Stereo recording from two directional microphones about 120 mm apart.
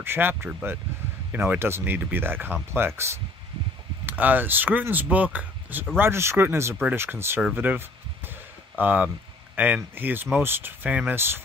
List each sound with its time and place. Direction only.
0.0 s speech: 20° right (ahead or behind)
8.3 s a sound: 15° right (ahead or behind)
9.8 s speech: 15° right (ahead or behind)